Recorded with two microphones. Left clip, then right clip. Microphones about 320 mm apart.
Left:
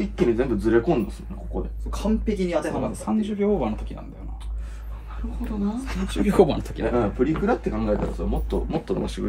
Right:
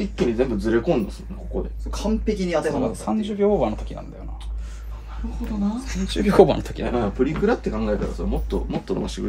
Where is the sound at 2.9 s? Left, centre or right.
Right.